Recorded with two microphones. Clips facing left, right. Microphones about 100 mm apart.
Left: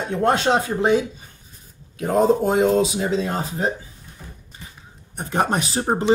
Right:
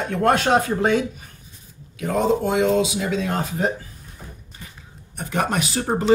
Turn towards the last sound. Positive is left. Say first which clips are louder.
# even
turn(degrees=25)  # may be behind; listen again after turning